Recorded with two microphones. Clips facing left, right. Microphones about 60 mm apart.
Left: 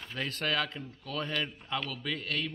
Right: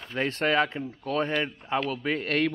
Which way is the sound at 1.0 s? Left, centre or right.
Right.